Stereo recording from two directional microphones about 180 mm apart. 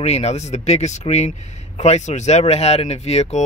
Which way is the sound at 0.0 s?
35° left (ahead or behind).